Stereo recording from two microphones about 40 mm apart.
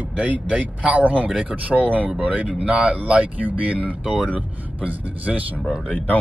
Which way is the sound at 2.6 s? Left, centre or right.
Right.